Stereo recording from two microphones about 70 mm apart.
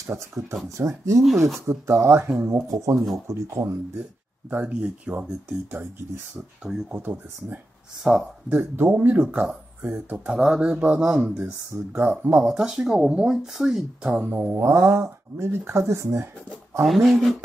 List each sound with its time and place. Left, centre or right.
0.1 s speech: right
4.5 s speech: right
6.9 s speech: right
8.0 s speech: centre
8.5 s speech: right
9.8 s speech: right
10.1 s speech: centre
12.4 s speech: centre
14.2 s speech: right
14.6 s speech: right
16.8 s speech: centre